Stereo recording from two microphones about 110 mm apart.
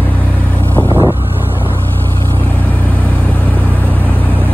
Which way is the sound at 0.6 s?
15° left (ahead or behind).